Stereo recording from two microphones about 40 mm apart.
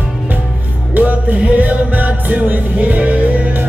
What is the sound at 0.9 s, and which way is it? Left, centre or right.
Music, right.